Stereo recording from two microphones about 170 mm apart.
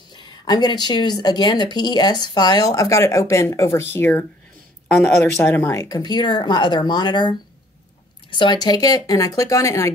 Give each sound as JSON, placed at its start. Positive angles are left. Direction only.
{"t": 0.1, "sound": "speech", "side_deg": 25}